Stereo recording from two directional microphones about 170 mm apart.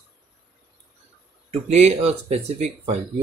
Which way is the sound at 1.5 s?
40° right (ahead or behind).